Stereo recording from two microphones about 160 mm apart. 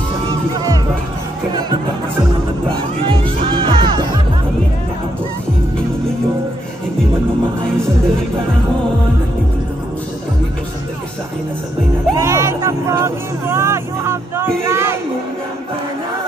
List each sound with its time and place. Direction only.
0.3 s music: 25° right (ahead or behind)
2.7 s music: 30° right (ahead or behind)
12.2 s vehicle: 20° right (ahead or behind)